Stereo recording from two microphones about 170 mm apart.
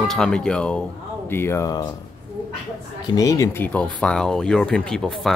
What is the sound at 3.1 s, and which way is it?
Speech, 20° left (ahead or behind).